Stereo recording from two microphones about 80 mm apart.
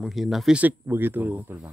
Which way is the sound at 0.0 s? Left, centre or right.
Centre.